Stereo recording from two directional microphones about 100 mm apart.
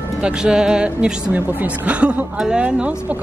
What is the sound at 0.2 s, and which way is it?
Speech, 10° right (ahead or behind).